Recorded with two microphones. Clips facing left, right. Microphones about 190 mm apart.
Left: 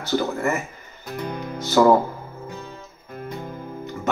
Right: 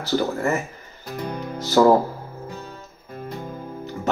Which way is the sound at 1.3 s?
35° right (ahead or behind).